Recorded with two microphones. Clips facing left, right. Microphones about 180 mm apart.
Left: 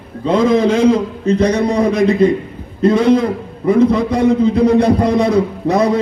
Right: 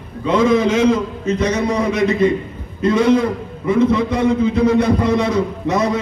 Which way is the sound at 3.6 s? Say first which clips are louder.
Left 3 dB; 35° left (ahead or behind).